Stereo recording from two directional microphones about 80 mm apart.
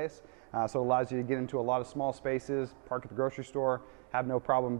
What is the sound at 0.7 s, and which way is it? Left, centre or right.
Speech, centre.